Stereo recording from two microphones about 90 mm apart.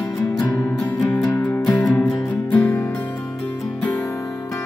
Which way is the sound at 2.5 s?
25° left (ahead or behind).